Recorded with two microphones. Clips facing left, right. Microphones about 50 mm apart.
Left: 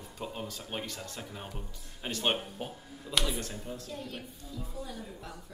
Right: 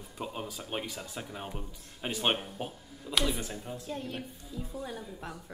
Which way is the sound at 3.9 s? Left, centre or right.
Right.